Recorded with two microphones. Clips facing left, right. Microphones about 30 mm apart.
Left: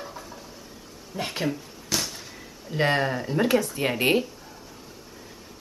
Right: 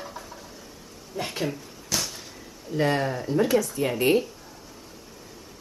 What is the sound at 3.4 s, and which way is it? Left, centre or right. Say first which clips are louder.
Speech: even; left.